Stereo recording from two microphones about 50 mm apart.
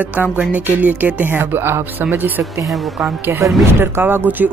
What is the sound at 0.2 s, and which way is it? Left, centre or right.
Speech, right.